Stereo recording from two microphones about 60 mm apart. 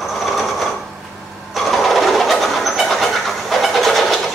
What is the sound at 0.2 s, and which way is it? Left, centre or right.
Sewing machine, centre.